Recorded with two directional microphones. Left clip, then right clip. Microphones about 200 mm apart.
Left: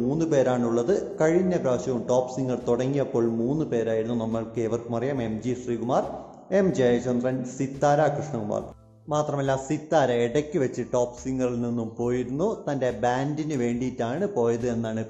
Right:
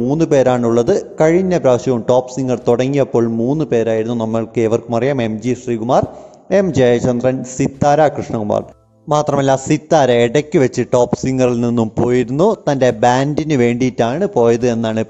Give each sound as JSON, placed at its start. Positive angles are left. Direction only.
{"t": 0.1, "sound": "a man's voice", "side_deg": -40}
{"t": 9.1, "sound": "a man's voice", "side_deg": -50}